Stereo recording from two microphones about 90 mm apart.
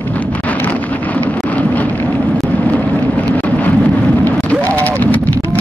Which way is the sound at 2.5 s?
15° left (ahead or behind).